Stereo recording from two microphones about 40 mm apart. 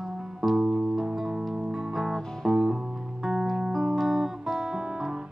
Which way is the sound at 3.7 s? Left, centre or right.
Centre.